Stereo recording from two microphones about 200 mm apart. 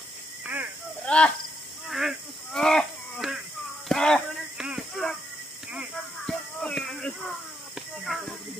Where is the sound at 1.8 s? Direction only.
Centre (ahead or behind).